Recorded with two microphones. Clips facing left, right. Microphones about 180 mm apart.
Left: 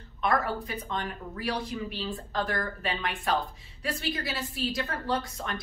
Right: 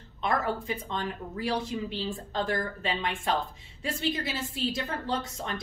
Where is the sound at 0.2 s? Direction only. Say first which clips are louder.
Left 1 dB; 25° right (ahead or behind).